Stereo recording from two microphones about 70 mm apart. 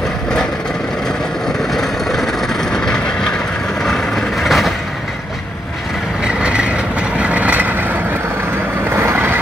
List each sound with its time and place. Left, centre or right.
1.7 s vehicle: centre
6.2 s vehicle: centre
8.9 s vehicle: right